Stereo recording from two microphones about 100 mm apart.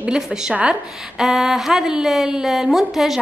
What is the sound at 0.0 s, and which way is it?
A woman's voice, 10° right (ahead or behind).